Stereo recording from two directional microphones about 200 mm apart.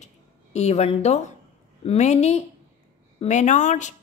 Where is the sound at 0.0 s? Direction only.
35° left (ahead or behind).